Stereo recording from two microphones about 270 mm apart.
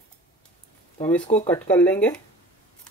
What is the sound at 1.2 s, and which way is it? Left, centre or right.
Speech, left.